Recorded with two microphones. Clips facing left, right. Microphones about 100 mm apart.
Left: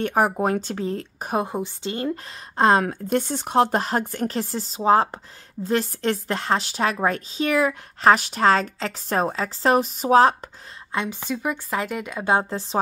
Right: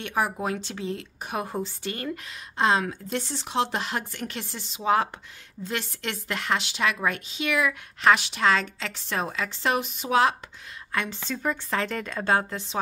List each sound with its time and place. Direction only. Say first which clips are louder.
0.0 s speech: left 6 dB; 45° left (ahead or behind)
1.4 s a woman's voice: left 4 dB; 20° left (ahead or behind)
2.5 s speech: left 5 dB; 45° left (ahead or behind)
10.9 s speech: left 4 dB; 20° left (ahead or behind)
12.4 s speech: left 4 dB; 35° left (ahead or behind)